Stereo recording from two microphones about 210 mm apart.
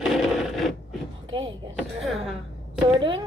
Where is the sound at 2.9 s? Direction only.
20° right (ahead or behind).